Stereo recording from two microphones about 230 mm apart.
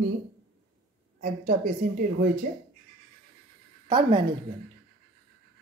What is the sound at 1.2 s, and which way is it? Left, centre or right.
A woman's voice, right.